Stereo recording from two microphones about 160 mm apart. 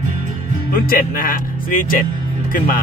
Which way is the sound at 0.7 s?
60° left (ahead or behind).